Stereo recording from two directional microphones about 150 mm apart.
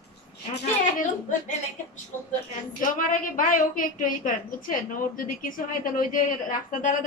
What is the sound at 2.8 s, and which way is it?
A woman's voice, 65° left (ahead or behind).